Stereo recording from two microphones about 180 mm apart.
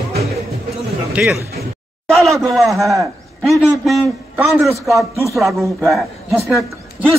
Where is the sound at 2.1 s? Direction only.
15° right (ahead or behind).